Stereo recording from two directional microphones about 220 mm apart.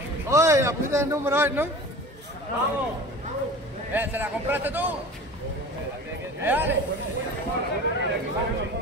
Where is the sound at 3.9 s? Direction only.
10° right (ahead or behind).